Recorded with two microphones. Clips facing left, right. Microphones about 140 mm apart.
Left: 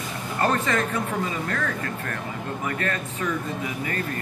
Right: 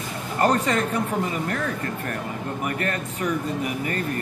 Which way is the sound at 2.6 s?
20° right (ahead or behind).